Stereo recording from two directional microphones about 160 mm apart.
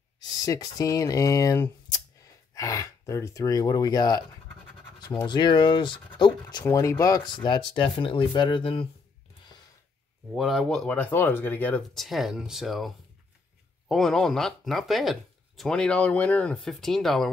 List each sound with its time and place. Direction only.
0.5 s speech: 20° left (ahead or behind)
10.3 s speech: centre (ahead or behind)